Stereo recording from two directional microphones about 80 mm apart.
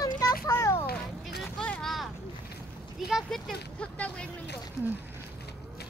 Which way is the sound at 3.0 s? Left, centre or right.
Centre.